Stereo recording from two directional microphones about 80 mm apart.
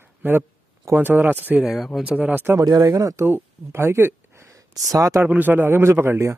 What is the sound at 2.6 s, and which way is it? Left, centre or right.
Speech, right.